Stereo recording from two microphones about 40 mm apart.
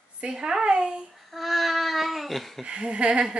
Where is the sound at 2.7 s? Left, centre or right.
Right.